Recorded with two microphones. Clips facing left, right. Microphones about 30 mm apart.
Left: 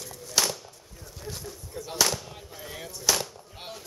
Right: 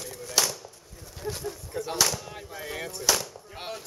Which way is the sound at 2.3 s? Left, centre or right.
Centre.